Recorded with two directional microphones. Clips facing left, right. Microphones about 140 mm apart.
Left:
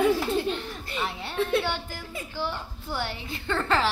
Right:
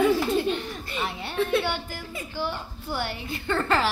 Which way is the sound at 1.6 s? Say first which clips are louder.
Right 1 dB; 15° right (ahead or behind).